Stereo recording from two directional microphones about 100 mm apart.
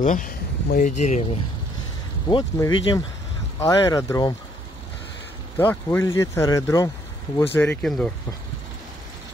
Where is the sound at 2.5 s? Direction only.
35° left (ahead or behind).